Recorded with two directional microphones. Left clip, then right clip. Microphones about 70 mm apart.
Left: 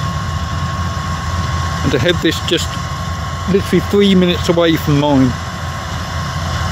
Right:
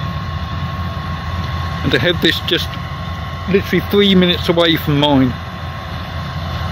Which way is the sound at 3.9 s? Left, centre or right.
Left.